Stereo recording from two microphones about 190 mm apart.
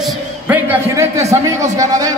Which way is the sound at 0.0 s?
10° right (ahead or behind).